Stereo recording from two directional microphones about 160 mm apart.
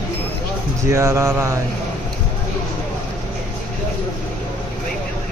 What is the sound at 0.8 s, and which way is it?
Speech, 20° right (ahead or behind).